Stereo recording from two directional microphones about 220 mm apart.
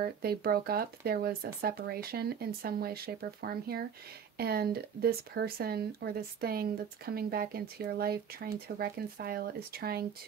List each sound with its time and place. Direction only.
0.0 s speech: 45° right (ahead or behind)